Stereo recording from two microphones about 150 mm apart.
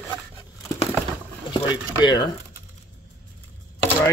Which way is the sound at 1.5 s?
30° left (ahead or behind).